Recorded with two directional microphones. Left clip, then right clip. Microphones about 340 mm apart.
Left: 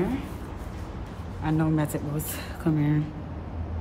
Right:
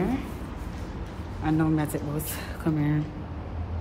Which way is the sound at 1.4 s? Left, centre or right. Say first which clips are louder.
Right 1 dB; centre.